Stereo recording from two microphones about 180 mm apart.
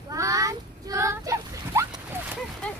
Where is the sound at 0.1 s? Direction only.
20° right (ahead or behind).